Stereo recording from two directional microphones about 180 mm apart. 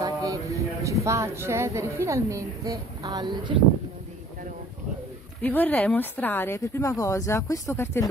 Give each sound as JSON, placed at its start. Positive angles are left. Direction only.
{"t": 0.0, "sound": "speech", "side_deg": -20}
{"t": 5.4, "sound": "speech", "side_deg": 10}